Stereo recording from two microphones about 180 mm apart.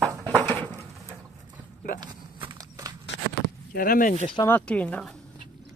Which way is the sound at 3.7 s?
50° left (ahead or behind).